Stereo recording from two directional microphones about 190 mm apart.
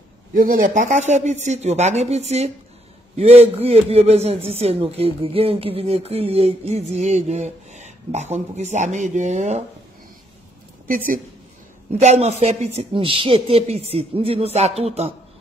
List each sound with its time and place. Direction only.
0.3 s a man's voice: 45° right (ahead or behind)
12.0 s a man's voice: 35° right (ahead or behind)